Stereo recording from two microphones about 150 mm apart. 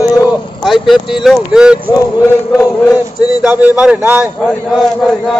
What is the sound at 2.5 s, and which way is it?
Chant, 25° left (ahead or behind).